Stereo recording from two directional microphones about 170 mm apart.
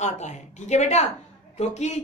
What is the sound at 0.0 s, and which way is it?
A woman's voice, 45° left (ahead or behind).